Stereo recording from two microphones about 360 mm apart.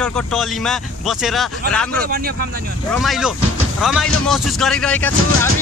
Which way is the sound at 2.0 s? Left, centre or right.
Right.